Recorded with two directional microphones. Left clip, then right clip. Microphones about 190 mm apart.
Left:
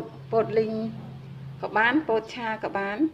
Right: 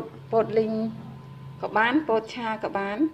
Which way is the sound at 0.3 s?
10° right (ahead or behind).